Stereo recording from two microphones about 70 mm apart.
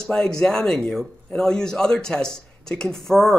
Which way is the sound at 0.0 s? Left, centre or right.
Centre.